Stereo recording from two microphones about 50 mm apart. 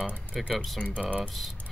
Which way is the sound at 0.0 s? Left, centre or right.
Right.